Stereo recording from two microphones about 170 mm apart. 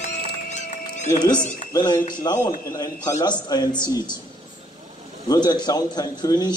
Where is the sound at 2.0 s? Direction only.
55° left (ahead or behind).